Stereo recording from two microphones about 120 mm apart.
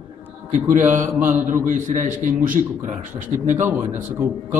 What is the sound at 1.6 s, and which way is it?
A man's voice, 90° right.